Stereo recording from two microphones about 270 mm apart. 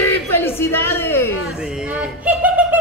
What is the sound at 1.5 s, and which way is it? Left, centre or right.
Speech, centre.